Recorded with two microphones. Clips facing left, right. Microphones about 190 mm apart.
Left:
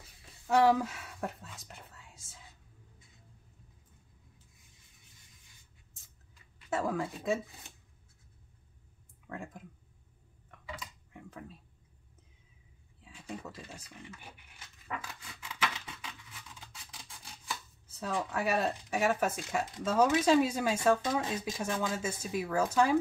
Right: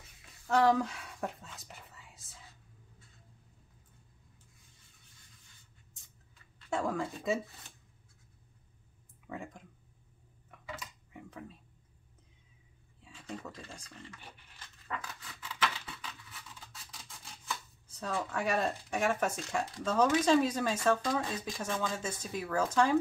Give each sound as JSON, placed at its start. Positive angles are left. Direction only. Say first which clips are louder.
{"t": 0.5, "sound": "speech", "louder": "left 1 dB", "side_deg": 10}
{"t": 6.7, "sound": "speech", "louder": "left 1 dB", "side_deg": 5}
{"t": 9.3, "sound": "speech", "louder": "even", "side_deg": 0}
{"t": 10.5, "sound": "a sound", "louder": "even", "side_deg": -5}
{"t": 13.1, "sound": "speech", "louder": "left 1 dB", "side_deg": 10}
{"t": 15.4, "sound": "scratch", "louder": "right 1 dB", "side_deg": 10}
{"t": 17.5, "sound": "speech", "louder": "right 1 dB", "side_deg": 5}
{"t": 21.0, "sound": "speech", "louder": "left 1 dB", "side_deg": 20}
{"t": 21.5, "sound": "speech", "louder": "even", "side_deg": 5}